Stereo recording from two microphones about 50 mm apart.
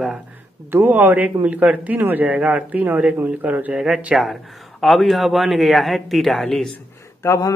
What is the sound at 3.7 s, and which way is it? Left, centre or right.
Speech, centre.